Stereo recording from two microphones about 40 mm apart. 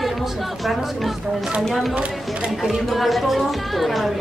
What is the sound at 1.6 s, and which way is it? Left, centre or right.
A woman's voice, centre.